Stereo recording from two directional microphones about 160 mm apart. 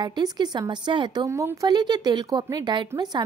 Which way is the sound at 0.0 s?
25° right (ahead or behind).